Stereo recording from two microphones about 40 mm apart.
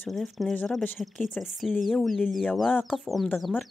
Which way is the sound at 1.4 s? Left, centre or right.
Centre.